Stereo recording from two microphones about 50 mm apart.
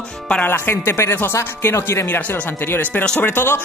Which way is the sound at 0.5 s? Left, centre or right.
Left.